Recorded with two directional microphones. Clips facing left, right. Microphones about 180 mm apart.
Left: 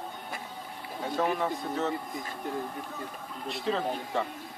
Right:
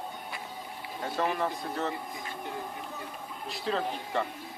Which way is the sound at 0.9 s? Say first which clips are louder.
Left 1 dB; centre (ahead or behind).